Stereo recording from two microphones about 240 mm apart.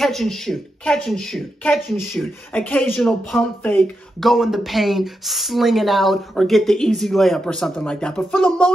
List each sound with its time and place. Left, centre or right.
0.0 s speech: centre